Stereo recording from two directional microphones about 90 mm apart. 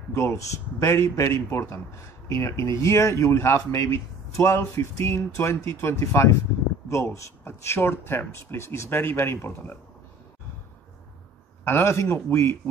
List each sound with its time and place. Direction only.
0.1 s speech: 30° left (ahead or behind)
11.6 s speech: 30° left (ahead or behind)